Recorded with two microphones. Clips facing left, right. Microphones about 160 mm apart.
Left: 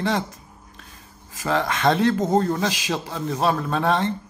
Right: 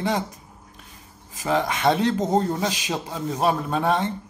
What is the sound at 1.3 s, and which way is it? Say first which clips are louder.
Speech: even; 15° right (ahead or behind).